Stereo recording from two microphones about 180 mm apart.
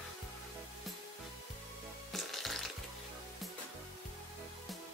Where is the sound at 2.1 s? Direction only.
Centre (ahead or behind).